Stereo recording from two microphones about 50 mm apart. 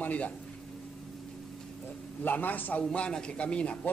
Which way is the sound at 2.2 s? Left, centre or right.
Left.